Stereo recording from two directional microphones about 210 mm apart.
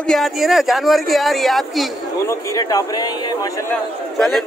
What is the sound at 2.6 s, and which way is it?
Speech, 15° left (ahead or behind).